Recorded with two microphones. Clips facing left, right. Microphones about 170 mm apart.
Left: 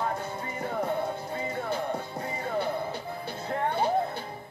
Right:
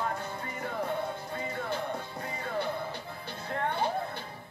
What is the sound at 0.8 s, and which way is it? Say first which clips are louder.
Music: left 3 dB; 45° left (ahead or behind).